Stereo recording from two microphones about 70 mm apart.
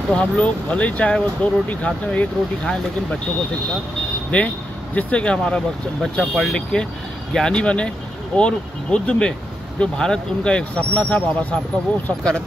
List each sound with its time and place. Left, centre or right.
0.1 s speech: centre
4.3 s speech: centre